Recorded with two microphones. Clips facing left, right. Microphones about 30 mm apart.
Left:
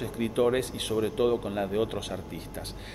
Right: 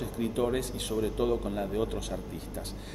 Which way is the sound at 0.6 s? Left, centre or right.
Left.